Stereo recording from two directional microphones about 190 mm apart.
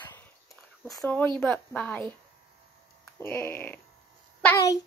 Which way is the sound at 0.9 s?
10° left (ahead or behind).